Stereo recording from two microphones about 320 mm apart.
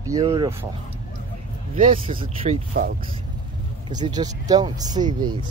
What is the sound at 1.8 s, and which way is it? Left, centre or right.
Speech, centre.